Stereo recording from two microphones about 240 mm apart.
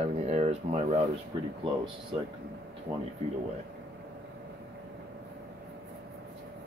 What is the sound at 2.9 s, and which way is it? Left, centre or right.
Speech, centre.